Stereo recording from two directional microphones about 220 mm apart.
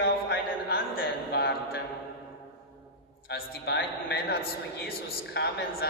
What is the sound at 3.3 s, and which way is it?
A man's voice, 50° left (ahead or behind).